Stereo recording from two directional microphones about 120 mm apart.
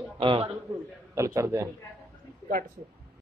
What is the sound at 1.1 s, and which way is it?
Speech, 25° right (ahead or behind).